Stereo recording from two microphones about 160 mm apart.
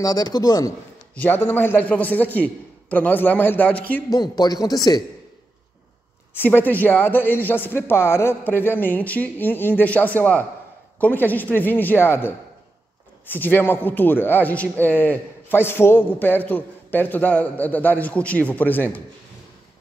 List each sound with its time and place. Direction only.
0.0 s speech: 25° left (ahead or behind)
1.1 s speech: 10° left (ahead or behind)
4.1 s speech: 25° left (ahead or behind)
6.3 s speech: 10° left (ahead or behind)